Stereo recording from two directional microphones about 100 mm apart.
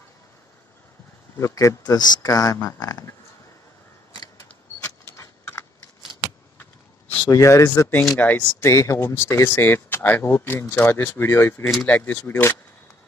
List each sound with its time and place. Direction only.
1.4 s speech: 30° left (ahead or behind)
5.0 s keys jangling: 30° left (ahead or behind)
7.2 s speech: 30° left (ahead or behind)
8.2 s speech: 15° left (ahead or behind)
8.5 s speech: 30° left (ahead or behind)
11.8 s speech: 15° left (ahead or behind)